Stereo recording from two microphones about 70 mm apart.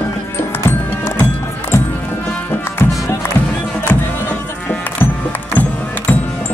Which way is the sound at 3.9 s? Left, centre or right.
Left.